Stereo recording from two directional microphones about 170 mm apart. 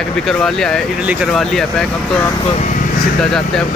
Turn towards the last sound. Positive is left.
turn(degrees=5)  # may be behind; listen again after turning